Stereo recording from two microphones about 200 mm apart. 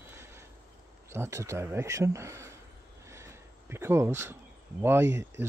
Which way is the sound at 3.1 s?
15° right (ahead or behind).